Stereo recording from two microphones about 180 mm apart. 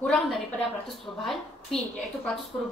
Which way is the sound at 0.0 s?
Centre (ahead or behind).